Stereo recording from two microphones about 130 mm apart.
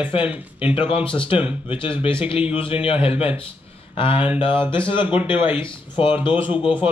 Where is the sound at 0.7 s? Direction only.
45° left (ahead or behind).